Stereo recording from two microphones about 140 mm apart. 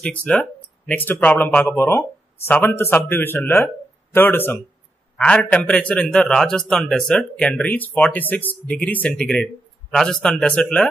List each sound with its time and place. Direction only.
0.0 s a man's voice: 10° left (ahead or behind)